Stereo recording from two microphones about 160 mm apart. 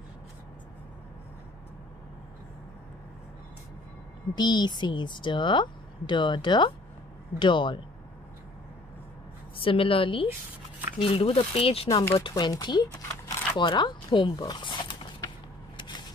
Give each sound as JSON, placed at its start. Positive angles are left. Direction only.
{"t": 4.4, "sound": "speech", "side_deg": 25}
{"t": 9.6, "sound": "speech", "side_deg": 35}
{"t": 11.9, "sound": "speech", "side_deg": 15}
{"t": 12.2, "sound": "speech", "side_deg": 25}